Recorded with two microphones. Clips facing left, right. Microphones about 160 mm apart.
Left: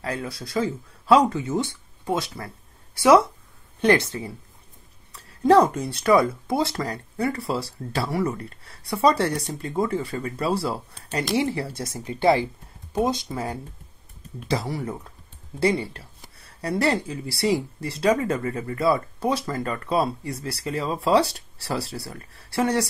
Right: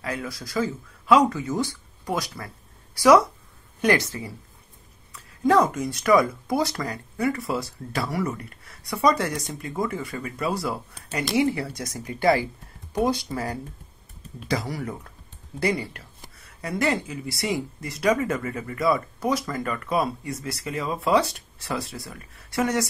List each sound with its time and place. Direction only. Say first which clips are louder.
0.0 s speech: left 1 dB; 30° left (ahead or behind)